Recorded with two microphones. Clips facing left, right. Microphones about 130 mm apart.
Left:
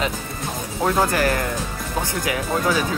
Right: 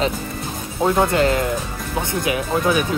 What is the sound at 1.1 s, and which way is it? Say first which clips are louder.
Speech: right 3 dB; 25° right (ahead or behind).